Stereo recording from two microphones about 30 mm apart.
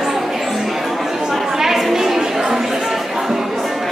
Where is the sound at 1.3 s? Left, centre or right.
Centre.